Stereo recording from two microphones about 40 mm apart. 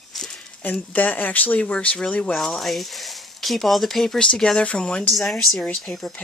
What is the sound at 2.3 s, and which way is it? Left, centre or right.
Speech, centre.